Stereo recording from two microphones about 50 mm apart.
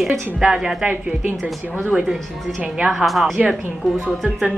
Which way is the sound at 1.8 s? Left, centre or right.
Centre.